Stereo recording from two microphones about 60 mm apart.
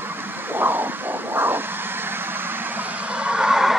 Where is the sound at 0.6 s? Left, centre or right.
Right.